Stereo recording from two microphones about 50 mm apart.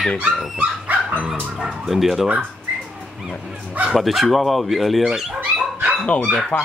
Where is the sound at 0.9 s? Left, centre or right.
Right.